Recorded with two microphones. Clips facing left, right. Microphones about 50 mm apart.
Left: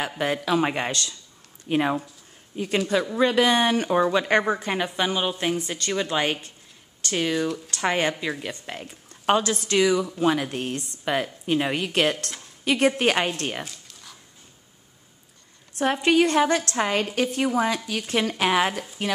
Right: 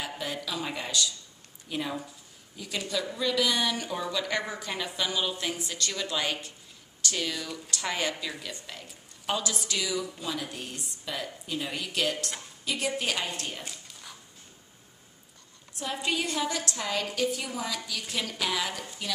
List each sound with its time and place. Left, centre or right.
0.2 s a woman's voice: left
13.7 s dog: centre
15.8 s a woman's voice: left